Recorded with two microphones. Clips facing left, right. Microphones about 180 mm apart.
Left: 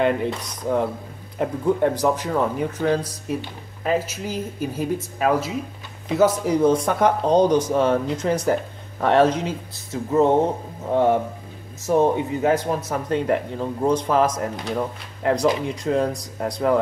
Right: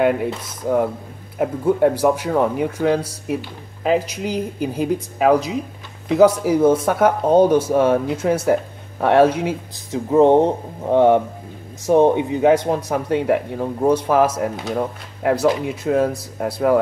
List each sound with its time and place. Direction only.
0.0 s speech: 5° right (ahead or behind)